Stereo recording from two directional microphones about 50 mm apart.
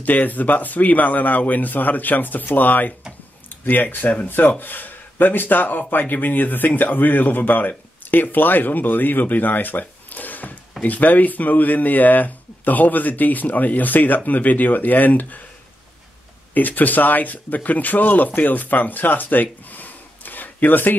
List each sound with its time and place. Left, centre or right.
0.0 s speech: left
16.5 s speech: left